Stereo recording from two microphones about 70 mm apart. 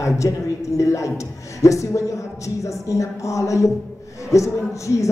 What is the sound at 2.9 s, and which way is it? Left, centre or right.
Speech, left.